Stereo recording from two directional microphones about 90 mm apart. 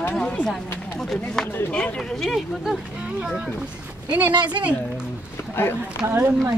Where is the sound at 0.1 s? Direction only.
10° left (ahead or behind).